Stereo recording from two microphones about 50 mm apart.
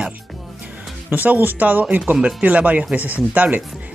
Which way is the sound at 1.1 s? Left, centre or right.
Right.